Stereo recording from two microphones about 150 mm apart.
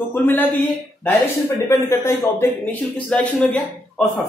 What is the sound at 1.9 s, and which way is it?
A man's voice, 15° left (ahead or behind).